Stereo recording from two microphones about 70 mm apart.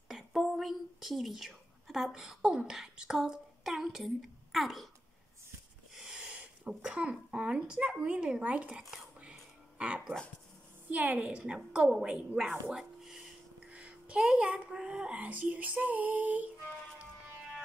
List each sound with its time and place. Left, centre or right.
0.1 s a woman's voice: centre
5.9 s a sound: centre
6.8 s speech: centre
9.2 s a sound: centre
10.9 s speech: right
13.7 s speech: centre